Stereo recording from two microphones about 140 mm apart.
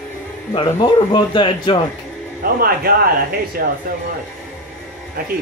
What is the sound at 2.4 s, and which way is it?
A man's voice, 90° right.